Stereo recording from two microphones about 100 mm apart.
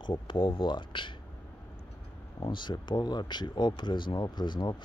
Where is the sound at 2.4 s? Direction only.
50° left (ahead or behind).